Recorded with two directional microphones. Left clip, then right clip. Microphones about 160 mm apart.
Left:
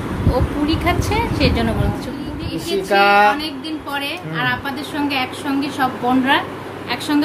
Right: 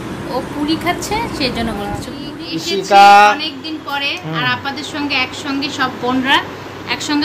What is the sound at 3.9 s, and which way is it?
A woman's voice, 20° left (ahead or behind).